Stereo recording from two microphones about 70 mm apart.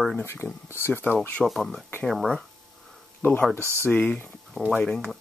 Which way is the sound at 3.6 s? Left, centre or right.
Right.